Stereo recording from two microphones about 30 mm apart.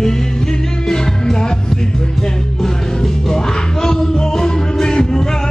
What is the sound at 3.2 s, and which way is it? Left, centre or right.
Music, left.